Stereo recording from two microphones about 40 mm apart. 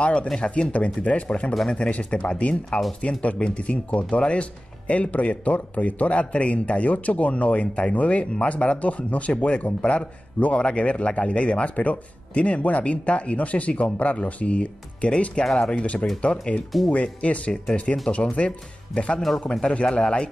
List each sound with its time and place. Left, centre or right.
0.0 s a man's voice: left